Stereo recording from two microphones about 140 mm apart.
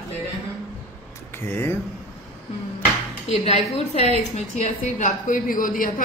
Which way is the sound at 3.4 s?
50° left (ahead or behind).